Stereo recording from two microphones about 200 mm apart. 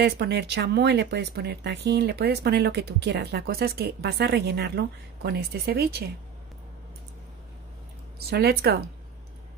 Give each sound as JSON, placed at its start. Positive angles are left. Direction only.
{"t": 0.0, "sound": "speech", "side_deg": -55}
{"t": 8.3, "sound": "speech", "side_deg": -50}